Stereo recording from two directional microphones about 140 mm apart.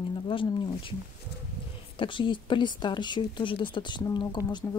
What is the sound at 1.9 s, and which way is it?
Speech, 35° left (ahead or behind).